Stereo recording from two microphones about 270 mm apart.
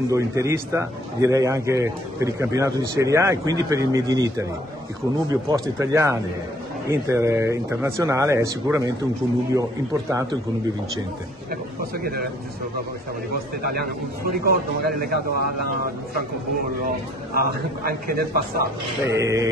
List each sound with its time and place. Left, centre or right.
0.1 s a man's voice: centre
12.0 s a man's voice: right
13.6 s a man's voice: right
14.4 s speech: left
16.8 s a man's voice: right
19.0 s a man's voice: centre